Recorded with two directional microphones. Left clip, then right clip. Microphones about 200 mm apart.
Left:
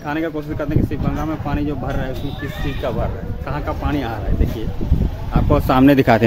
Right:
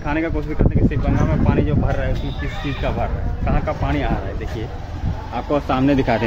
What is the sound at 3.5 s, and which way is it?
Speech, 20° left (ahead or behind).